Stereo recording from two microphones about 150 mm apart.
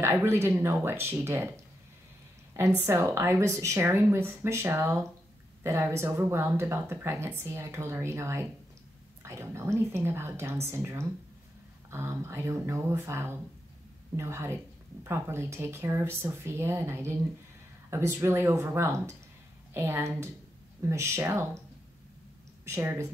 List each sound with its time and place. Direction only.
0.0 s speech: 15° right (ahead or behind)
2.5 s speech: 15° right (ahead or behind)
22.7 s speech: 15° right (ahead or behind)